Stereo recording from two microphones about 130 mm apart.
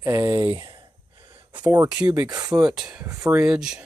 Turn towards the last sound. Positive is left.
turn(degrees=-5)  # may be behind; listen again after turning